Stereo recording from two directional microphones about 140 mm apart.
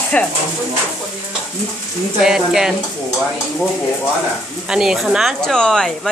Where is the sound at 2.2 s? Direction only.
5° right (ahead or behind).